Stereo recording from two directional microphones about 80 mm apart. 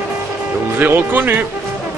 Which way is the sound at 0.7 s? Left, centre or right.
Right.